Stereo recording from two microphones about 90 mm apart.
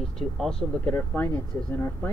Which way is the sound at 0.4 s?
5° left (ahead or behind).